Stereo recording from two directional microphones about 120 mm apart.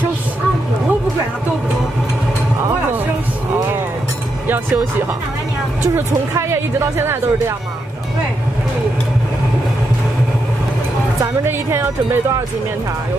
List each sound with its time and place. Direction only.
5.9 s speech: 20° right (ahead or behind)
11.4 s speech: 20° right (ahead or behind)